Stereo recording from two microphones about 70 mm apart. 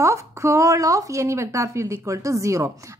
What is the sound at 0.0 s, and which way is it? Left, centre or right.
Speech, right.